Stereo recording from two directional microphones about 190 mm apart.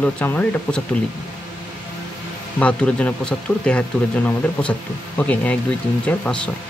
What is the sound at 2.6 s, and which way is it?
Speech, 5° left (ahead or behind).